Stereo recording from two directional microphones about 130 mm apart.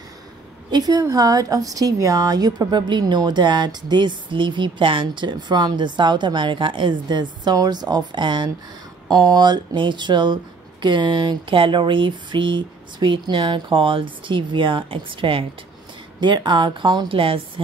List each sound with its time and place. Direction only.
0.7 s a woman's voice: 30° right (ahead or behind)